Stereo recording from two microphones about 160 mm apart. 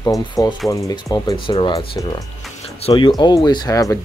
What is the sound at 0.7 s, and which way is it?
Speech, 20° left (ahead or behind).